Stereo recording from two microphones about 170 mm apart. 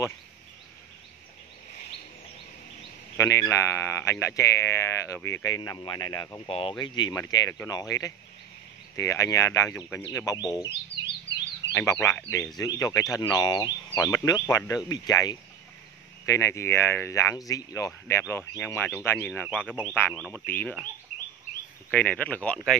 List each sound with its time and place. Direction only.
3.2 s speech: 15° left (ahead or behind)
11.7 s speech: 15° left (ahead or behind)
21.9 s speech: 10° left (ahead or behind)